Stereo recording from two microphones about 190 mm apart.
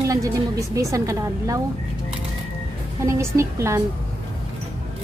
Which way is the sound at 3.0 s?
15° right (ahead or behind).